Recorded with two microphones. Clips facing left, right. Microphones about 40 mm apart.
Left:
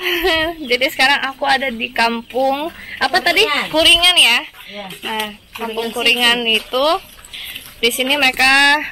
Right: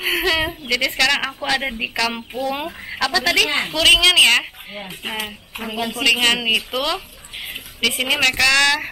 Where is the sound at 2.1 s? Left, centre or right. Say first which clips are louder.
Left 7 dB; left.